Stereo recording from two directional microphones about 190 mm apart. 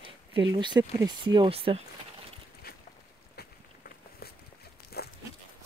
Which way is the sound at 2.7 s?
55° left (ahead or behind).